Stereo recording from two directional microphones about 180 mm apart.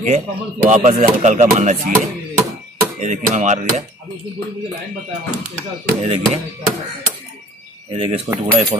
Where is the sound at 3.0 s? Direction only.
40° right (ahead or behind).